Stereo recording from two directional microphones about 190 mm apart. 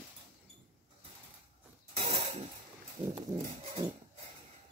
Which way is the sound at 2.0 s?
35° right (ahead or behind).